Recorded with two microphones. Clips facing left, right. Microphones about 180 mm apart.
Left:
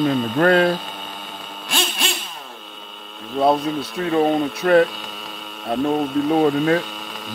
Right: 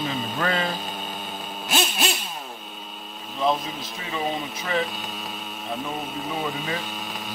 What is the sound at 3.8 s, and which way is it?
Speech, 65° left (ahead or behind).